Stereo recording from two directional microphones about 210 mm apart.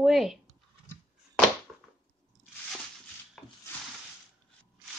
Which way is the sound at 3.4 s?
Centre (ahead or behind).